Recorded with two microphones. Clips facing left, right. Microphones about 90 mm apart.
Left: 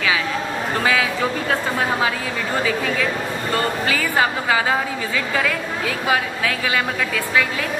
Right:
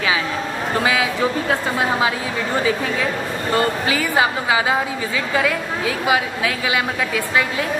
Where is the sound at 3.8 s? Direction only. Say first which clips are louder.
Right 1 dB; 15° right (ahead or behind).